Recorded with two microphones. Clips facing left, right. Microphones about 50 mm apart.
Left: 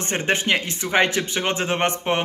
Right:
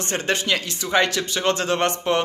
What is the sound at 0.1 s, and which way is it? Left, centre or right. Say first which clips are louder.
Speech: left 2 dB; left.